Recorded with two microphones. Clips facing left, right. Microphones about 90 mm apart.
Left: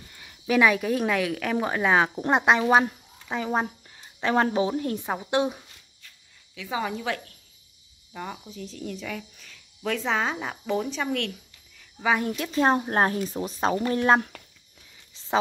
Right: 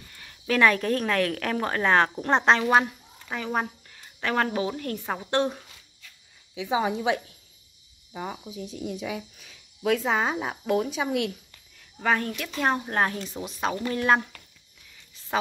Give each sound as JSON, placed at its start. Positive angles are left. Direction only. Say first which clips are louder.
{"t": 0.1, "sound": "a woman's voice", "louder": "left 2 dB", "side_deg": 10}
{"t": 3.3, "sound": "a woman's voice", "louder": "left 2 dB", "side_deg": 25}
{"t": 6.5, "sound": "a woman's voice", "louder": "right 4 dB", "side_deg": -20}
{"t": 12.0, "sound": "a woman's voice", "louder": "left 1 dB", "side_deg": 5}
{"t": 12.5, "sound": "speech", "louder": "left 3 dB", "side_deg": 30}